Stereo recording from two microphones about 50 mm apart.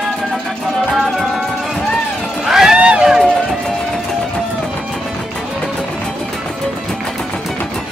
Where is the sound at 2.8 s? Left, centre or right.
Right.